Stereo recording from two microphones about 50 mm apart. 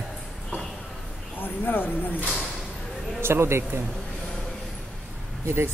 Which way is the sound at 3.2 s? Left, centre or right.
Right.